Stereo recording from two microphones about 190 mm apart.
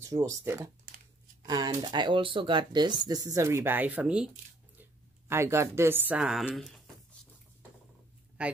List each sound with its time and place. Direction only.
0.0 s speech: 15° right (ahead or behind)
0.9 s a sound: 45° right (ahead or behind)
1.4 s speech: 20° right (ahead or behind)
5.3 s speech: 15° right (ahead or behind)
8.4 s speech: 5° right (ahead or behind)